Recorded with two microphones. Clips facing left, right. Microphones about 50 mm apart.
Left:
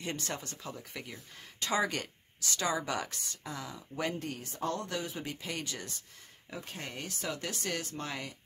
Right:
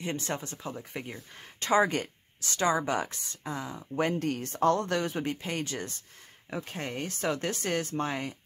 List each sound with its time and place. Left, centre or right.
0.0 s speech: right
4.2 s speech: right